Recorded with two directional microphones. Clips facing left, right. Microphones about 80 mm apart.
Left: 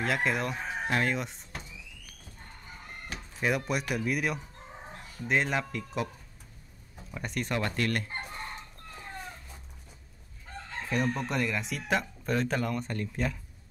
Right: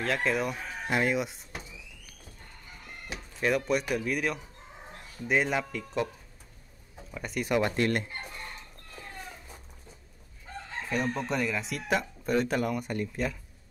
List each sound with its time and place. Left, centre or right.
0.0 s speech: centre
3.3 s speech: centre
7.7 s chicken: right
8.1 s chicken: left
10.8 s speech: centre